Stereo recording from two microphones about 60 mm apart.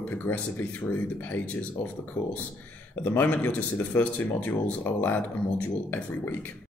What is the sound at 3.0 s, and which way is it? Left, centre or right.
Speech, left.